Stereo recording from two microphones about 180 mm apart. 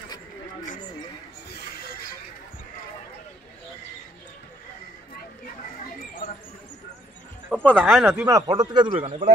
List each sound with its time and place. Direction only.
1.5 s a sound: 55° left (ahead or behind)
7.5 s speech: 5° left (ahead or behind)
8.0 s a man's voice: 15° right (ahead or behind); by 9.3 s 30° right (ahead or behind)